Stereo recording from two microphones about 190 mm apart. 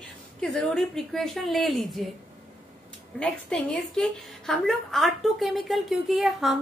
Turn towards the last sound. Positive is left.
turn(degrees=0)  # may be behind; listen again after turning